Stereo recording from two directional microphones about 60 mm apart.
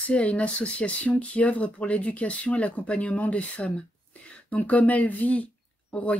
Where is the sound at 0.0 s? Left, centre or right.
Left.